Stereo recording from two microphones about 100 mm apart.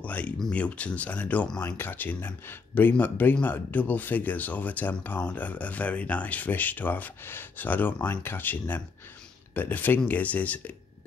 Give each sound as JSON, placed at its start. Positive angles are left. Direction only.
{"t": 0.0, "sound": "speech", "side_deg": 15}